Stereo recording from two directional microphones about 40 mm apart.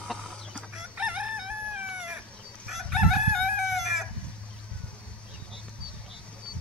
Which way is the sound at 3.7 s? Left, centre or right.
Centre.